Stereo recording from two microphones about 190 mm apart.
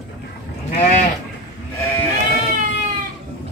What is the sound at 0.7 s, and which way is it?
Sheep, 35° left (ahead or behind).